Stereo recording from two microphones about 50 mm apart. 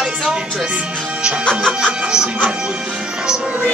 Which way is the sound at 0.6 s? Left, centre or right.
Right.